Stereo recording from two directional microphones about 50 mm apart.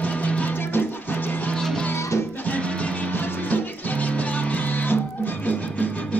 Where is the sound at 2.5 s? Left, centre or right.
Left.